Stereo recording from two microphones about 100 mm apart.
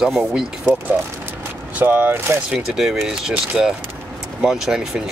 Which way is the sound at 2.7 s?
5° right (ahead or behind).